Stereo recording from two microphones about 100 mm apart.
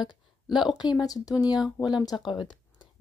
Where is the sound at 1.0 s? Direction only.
40° left (ahead or behind).